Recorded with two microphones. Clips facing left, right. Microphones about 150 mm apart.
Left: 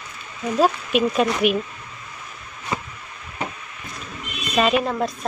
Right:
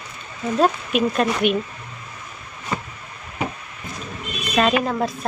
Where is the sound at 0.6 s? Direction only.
Centre (ahead or behind).